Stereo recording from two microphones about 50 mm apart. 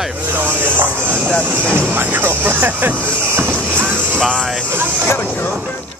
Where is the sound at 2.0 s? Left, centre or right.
Right.